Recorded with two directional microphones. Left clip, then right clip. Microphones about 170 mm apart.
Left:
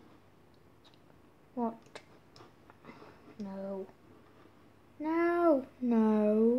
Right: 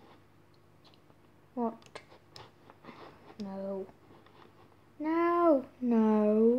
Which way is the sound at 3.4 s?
Centre (ahead or behind).